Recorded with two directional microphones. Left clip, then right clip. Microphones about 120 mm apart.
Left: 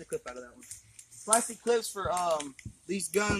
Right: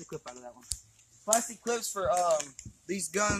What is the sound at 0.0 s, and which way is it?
Speech, 30° right (ahead or behind).